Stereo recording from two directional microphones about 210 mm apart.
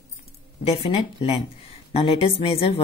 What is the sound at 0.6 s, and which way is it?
A woman's voice, 25° left (ahead or behind).